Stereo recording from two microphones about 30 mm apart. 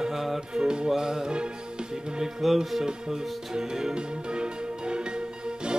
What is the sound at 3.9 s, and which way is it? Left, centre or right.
Music, right.